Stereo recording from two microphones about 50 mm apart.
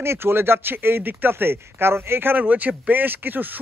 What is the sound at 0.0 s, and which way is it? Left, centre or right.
Speech, right.